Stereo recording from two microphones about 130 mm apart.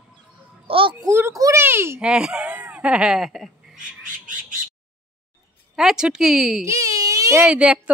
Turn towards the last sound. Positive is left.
turn(degrees=-10)  # may be behind; listen again after turning